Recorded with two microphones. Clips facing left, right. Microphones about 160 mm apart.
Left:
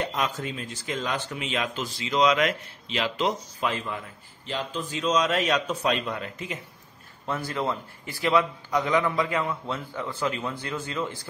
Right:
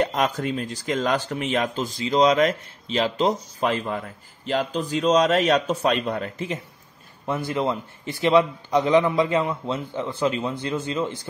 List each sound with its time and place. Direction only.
0.0 s speech: 45° right (ahead or behind); by 3.3 s 30° right (ahead or behind)
3.3 s speech: 40° right (ahead or behind)
5.7 s speech: 50° right (ahead or behind)
7.2 s a man's voice: 20° right (ahead or behind)